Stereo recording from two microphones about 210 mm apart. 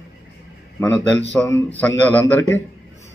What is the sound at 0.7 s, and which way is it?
A man's voice, 15° left (ahead or behind).